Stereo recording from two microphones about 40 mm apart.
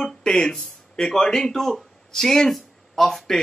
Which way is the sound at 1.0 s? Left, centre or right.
Centre.